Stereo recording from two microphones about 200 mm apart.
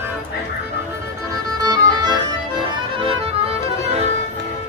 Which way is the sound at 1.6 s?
20° right (ahead or behind).